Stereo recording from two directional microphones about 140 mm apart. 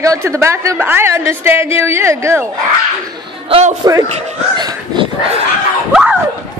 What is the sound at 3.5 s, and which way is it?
Speech, 50° right (ahead or behind).